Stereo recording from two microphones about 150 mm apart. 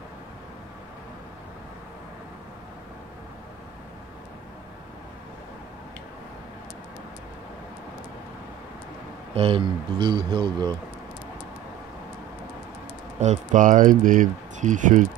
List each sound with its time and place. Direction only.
9.3 s a man's voice: 40° right (ahead or behind)
13.2 s speech: 50° right (ahead or behind)